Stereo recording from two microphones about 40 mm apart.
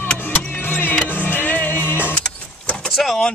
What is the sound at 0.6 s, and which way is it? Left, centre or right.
Vehicle, left.